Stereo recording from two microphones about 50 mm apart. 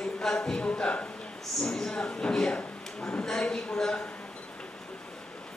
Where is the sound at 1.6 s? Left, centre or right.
Centre.